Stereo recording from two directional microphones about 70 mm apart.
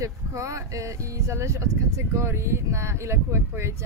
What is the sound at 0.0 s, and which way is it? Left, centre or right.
Speech, right.